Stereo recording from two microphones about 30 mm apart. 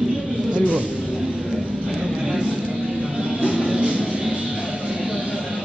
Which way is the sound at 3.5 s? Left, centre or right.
Right.